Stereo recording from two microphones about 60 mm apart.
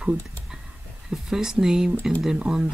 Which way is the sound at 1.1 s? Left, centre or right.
Centre.